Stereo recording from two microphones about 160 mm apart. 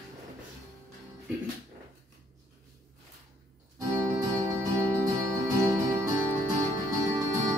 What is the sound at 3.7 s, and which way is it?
Music, 20° right (ahead or behind).